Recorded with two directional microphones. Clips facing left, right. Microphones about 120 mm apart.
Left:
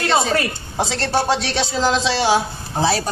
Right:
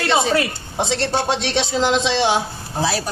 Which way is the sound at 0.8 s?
25° right (ahead or behind).